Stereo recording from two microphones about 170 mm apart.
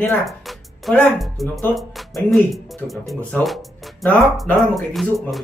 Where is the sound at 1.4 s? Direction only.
Centre (ahead or behind).